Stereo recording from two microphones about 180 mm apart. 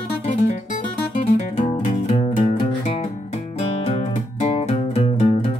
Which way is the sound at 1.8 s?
30° left (ahead or behind).